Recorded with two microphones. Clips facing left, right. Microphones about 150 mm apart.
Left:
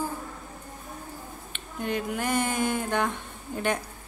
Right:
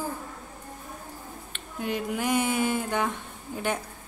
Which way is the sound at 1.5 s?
5° right (ahead or behind).